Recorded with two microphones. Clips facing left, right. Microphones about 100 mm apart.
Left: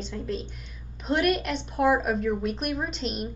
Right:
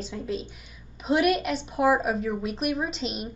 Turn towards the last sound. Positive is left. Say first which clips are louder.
# even
turn(degrees=0)  # may be behind; listen again after turning